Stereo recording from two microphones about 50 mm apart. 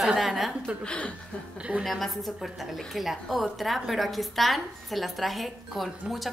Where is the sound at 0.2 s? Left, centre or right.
Centre.